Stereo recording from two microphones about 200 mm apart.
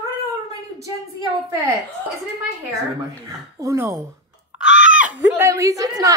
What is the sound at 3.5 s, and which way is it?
Speech, 15° right (ahead or behind).